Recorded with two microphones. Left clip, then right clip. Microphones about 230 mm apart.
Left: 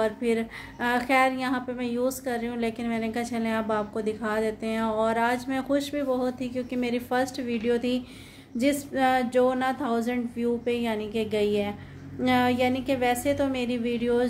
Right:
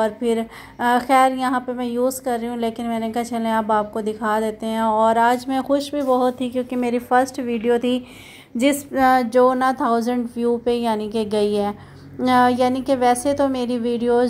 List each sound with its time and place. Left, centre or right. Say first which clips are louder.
0.0 s a woman's voice: right 5 dB; centre